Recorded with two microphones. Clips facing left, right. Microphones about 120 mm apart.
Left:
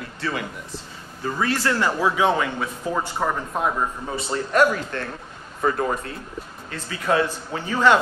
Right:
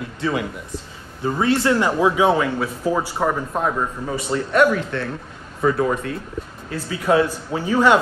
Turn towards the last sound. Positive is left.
turn(degrees=-10)  # may be behind; listen again after turning